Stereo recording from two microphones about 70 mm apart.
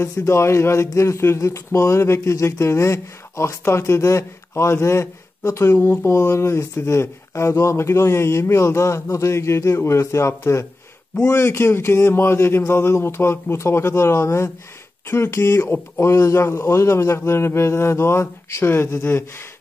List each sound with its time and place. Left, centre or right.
0.1 s speech: left